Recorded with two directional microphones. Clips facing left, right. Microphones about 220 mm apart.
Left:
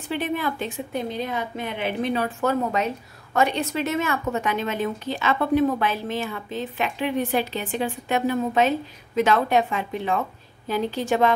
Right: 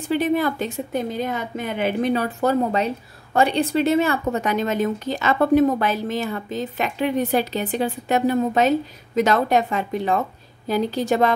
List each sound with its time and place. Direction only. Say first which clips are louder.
0.1 s a woman's voice: right 6 dB; 40° right (ahead or behind)